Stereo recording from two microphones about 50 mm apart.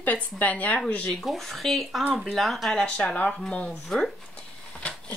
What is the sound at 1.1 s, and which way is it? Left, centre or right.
Speech, centre.